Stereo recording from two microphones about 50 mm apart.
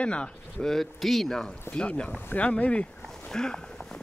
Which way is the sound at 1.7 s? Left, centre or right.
Left.